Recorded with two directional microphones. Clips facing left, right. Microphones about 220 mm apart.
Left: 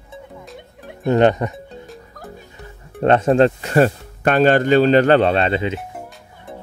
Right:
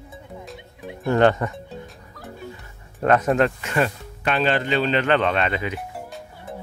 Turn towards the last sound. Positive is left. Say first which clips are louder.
# left 5 dB
turn(degrees=25)  # may be behind; listen again after turning